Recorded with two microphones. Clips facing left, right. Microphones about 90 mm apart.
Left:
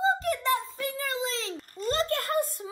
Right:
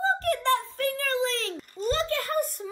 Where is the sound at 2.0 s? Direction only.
35° left (ahead or behind).